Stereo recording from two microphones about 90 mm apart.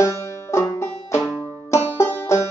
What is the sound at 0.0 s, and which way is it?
Banjo, 35° left (ahead or behind).